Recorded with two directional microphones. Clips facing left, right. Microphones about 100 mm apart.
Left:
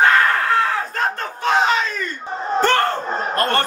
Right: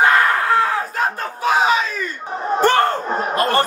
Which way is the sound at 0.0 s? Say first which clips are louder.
Even; 15° right (ahead or behind).